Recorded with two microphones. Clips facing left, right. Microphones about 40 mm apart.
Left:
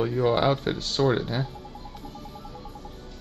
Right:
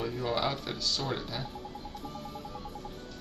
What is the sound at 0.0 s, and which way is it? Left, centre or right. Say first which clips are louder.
Speech: left 9 dB; left.